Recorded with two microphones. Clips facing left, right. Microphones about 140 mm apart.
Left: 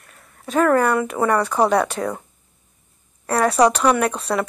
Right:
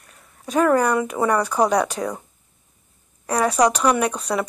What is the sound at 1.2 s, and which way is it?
A woman's voice, 10° right (ahead or behind).